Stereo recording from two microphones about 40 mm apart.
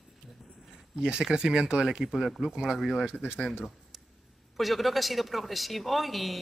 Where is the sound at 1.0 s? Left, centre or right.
Centre.